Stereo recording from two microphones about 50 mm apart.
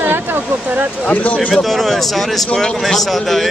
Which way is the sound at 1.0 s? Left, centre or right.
Left.